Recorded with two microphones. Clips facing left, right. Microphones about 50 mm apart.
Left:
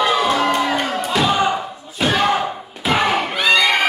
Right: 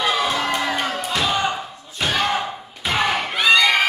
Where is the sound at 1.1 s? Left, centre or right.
Centre.